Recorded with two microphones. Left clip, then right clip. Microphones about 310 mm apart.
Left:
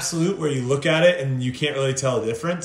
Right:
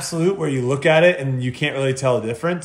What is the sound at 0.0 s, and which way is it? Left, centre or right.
Speech, centre.